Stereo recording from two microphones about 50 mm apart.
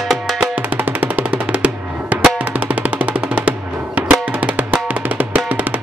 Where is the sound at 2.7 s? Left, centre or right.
Right.